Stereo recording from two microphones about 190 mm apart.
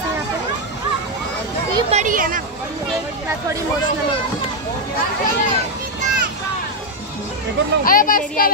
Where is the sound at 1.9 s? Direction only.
40° right (ahead or behind).